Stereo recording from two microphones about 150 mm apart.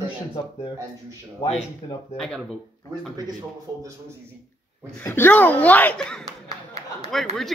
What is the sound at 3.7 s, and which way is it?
Speech, 30° right (ahead or behind).